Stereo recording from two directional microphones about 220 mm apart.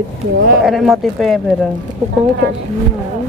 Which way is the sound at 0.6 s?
Centre (ahead or behind).